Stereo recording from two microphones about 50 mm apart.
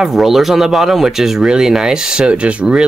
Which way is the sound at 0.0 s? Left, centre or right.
Centre.